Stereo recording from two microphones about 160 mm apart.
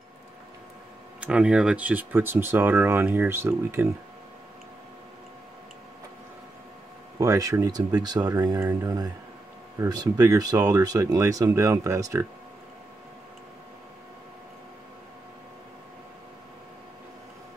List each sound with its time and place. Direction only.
1.2 s speech: 5° right (ahead or behind)
7.2 s speech: 20° right (ahead or behind)